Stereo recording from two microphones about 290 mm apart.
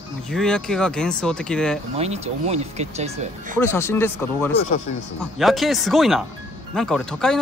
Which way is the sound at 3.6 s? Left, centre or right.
Centre.